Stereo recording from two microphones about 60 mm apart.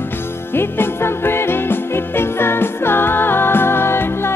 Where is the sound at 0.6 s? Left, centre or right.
Left.